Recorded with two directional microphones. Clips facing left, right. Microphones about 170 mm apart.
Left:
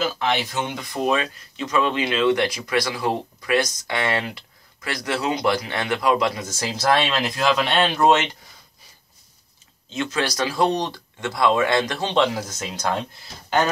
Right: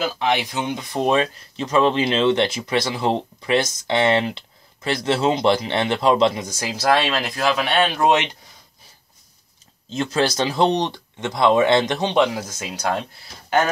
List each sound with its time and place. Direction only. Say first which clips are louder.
0.2 s speech: right 2 dB; 15° right (ahead or behind)
1.0 s speech: right 3 dB; 30° right (ahead or behind); by 8.3 s 15° right (ahead or behind)
9.8 s speech: right 3 dB; 35° right (ahead or behind)
10.2 s speech: right 3 dB; 25° right (ahead or behind)